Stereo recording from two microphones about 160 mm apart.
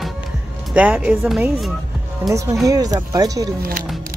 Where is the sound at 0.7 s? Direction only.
5° right (ahead or behind).